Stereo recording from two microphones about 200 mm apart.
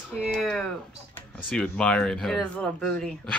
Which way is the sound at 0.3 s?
Centre (ahead or behind).